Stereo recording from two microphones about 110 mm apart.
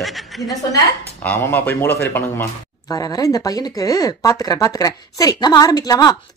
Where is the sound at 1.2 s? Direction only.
15° left (ahead or behind).